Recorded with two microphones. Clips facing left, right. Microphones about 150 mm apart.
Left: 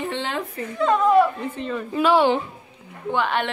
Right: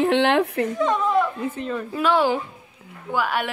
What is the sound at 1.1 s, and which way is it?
Speech, centre (ahead or behind).